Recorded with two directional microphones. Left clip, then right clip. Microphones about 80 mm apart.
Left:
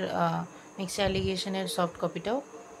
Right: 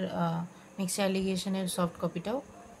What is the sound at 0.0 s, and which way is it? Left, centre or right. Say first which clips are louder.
Speech: left 5 dB; centre.